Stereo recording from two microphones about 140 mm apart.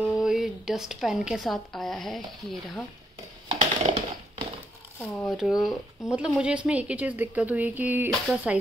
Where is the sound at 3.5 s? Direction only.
55° right (ahead or behind).